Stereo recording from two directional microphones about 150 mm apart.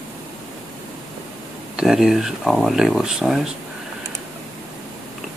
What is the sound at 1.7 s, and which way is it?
Speech, 5° right (ahead or behind).